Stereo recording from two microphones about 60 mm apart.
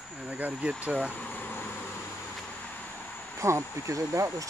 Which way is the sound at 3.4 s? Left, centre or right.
Right.